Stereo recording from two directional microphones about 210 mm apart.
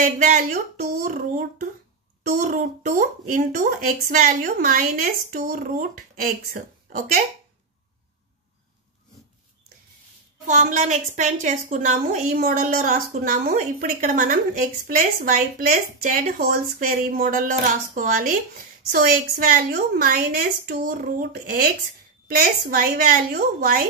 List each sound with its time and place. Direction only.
0.0 s speech: 35° right (ahead or behind)
10.4 s speech: 40° right (ahead or behind)
22.9 s a woman's voice: 45° right (ahead or behind)